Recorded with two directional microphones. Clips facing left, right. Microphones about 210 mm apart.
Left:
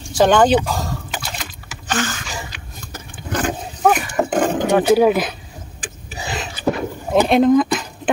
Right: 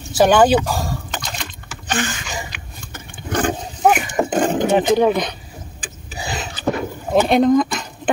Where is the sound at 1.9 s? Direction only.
15° right (ahead or behind).